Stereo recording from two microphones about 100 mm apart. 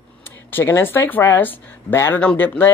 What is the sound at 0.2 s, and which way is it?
Speech, 20° left (ahead or behind).